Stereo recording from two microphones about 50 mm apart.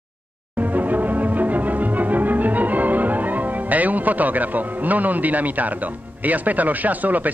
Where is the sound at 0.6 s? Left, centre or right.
Right.